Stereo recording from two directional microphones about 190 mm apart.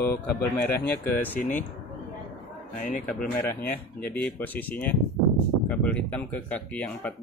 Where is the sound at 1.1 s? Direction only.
10° left (ahead or behind).